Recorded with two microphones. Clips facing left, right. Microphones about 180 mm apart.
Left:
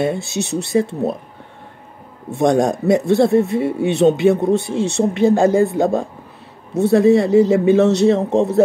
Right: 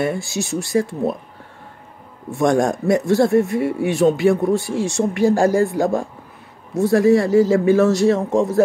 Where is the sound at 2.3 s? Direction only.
20° left (ahead or behind).